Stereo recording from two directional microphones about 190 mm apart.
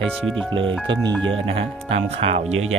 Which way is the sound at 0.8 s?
25° right (ahead or behind).